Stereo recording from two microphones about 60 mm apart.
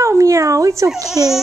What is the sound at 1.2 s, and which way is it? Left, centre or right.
Baby cry, right.